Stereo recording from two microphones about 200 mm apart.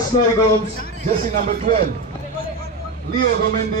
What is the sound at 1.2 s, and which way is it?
Speech, 40° right (ahead or behind).